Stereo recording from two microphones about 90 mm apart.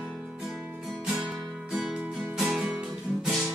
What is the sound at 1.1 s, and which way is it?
Music, 10° right (ahead or behind).